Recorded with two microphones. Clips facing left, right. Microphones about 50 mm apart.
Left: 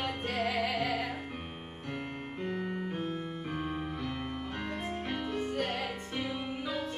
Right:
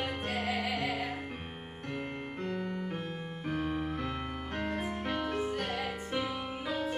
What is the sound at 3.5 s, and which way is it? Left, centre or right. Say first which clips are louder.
Music: right 4 dB; centre.